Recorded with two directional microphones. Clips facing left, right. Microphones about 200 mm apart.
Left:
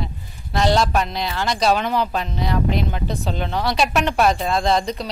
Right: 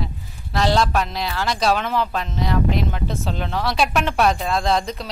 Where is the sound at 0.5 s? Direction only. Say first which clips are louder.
Left 1 dB; centre (ahead or behind).